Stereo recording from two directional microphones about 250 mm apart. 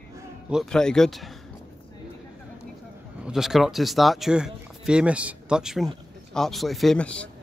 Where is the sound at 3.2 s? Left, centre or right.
Centre.